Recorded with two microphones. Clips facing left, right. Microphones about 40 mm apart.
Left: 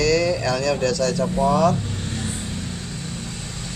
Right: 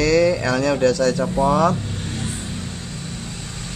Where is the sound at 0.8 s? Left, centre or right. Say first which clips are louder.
Right 3 dB; right.